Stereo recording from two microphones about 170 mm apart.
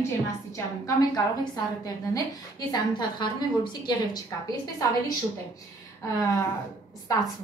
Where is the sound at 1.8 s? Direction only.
20° left (ahead or behind).